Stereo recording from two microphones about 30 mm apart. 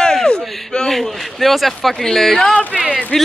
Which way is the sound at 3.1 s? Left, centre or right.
Left.